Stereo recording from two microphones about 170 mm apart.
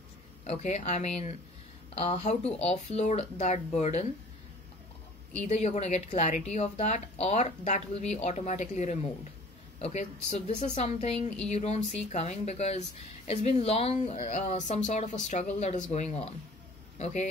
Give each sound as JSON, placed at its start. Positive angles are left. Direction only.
{"t": 0.5, "sound": "a woman's voice", "side_deg": 45}
{"t": 5.5, "sound": "a woman's voice", "side_deg": 40}